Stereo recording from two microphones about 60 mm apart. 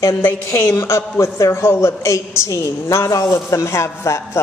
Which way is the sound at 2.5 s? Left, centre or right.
Left.